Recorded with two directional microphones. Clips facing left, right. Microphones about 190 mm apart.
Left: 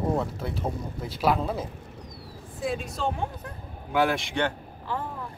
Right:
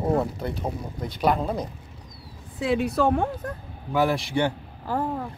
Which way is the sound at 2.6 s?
70° right (ahead or behind).